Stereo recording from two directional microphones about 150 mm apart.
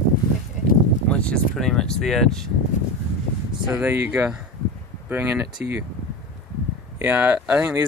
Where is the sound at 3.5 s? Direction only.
5° right (ahead or behind).